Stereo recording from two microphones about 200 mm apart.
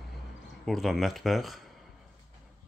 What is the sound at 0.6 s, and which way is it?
Speech, centre (ahead or behind).